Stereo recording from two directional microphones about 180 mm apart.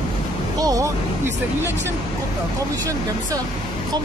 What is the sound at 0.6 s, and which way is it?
Speech, 20° right (ahead or behind).